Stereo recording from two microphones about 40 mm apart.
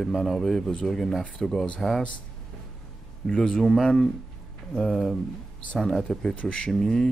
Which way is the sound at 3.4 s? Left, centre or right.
Centre.